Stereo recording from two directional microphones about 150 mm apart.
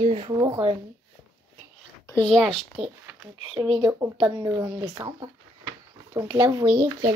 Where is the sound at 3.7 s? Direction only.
25° right (ahead or behind).